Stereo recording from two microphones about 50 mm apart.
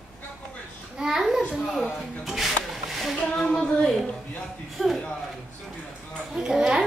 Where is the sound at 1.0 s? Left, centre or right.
Centre.